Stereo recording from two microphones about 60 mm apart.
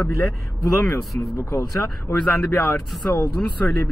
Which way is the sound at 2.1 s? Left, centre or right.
Left.